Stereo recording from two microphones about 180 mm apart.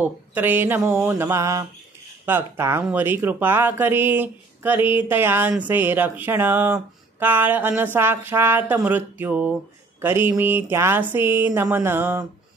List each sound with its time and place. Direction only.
0.0 s speech: 10° right (ahead or behind)